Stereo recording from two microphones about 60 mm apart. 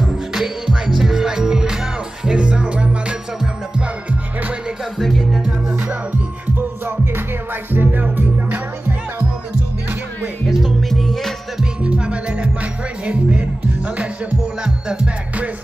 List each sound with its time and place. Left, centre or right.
0.0 s music: centre; by 4.6 s right
4.9 s music: centre
7.7 s music: right
10.4 s music: centre
11.5 s music: centre